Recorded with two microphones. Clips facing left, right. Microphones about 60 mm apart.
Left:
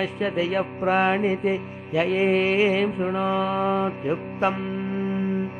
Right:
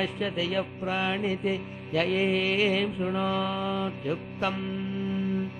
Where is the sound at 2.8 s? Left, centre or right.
Centre.